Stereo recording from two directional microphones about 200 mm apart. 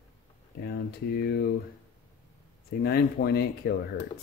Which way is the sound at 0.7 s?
50° left (ahead or behind).